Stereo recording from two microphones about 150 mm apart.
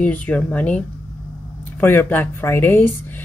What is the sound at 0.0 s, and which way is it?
Speech, 10° left (ahead or behind).